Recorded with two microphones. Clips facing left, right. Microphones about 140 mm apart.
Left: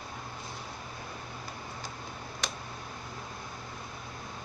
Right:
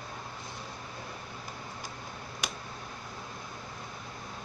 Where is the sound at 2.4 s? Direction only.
10° right (ahead or behind).